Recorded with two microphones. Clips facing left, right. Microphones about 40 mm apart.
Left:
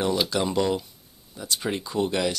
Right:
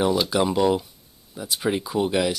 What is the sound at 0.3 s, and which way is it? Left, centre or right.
Speech, centre.